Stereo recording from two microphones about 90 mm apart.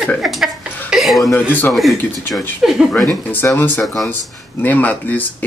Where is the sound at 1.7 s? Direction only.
Centre (ahead or behind).